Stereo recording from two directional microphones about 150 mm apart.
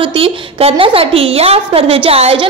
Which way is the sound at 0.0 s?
35° right (ahead or behind).